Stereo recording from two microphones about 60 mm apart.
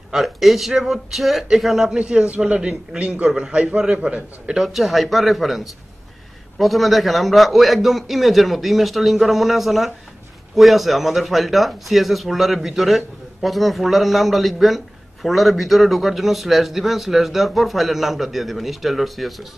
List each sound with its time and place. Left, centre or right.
0.1 s speech: centre
2.0 s a man's voice: centre
4.6 s speech: centre